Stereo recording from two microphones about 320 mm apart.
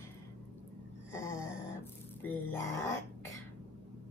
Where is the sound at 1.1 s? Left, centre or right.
Centre.